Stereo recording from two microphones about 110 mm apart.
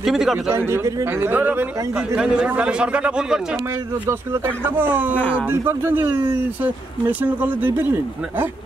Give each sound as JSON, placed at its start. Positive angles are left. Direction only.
{"t": 0.0, "sound": "a man's voice", "side_deg": -5}
{"t": 0.5, "sound": "a man's voice", "side_deg": -20}
{"t": 4.0, "sound": "a man's voice", "side_deg": -20}
{"t": 5.1, "sound": "speech", "side_deg": 15}
{"t": 5.5, "sound": "a man's voice", "side_deg": -20}